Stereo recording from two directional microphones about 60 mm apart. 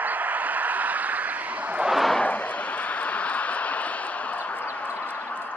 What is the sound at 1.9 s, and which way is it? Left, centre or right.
Vehicle, centre.